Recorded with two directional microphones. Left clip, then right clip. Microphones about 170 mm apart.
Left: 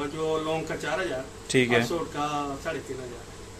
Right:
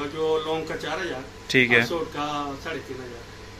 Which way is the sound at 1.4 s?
10° left (ahead or behind).